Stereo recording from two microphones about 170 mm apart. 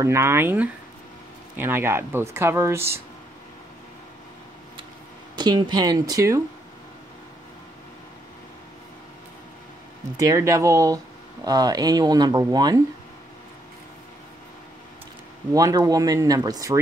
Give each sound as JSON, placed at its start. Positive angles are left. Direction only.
{"t": 0.0, "sound": "speech", "side_deg": -15}
{"t": 5.4, "sound": "speech", "side_deg": -25}
{"t": 10.1, "sound": "speech", "side_deg": -20}
{"t": 15.5, "sound": "speech", "side_deg": -20}